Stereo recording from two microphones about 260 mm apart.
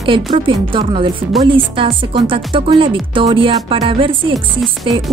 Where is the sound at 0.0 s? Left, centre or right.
Centre.